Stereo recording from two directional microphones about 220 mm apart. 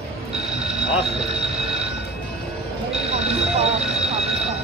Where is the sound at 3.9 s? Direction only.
Centre (ahead or behind).